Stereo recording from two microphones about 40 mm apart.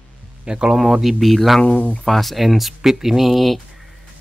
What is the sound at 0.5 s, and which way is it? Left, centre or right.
Speech, centre.